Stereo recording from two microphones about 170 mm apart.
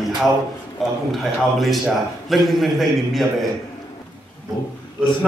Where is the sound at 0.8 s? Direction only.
Centre (ahead or behind).